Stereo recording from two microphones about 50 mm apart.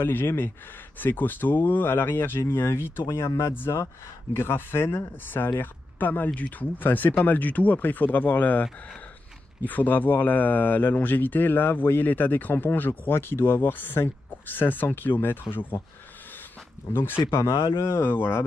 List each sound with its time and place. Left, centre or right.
0.0 s speech: left
3.1 s speech: left
4.4 s speech: left
16.9 s speech: left
17.3 s speech: left